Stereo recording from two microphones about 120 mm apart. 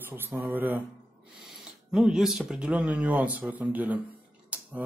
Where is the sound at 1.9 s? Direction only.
5° right (ahead or behind).